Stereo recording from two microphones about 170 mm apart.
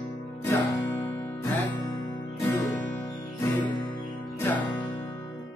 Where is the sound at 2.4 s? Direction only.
15° left (ahead or behind).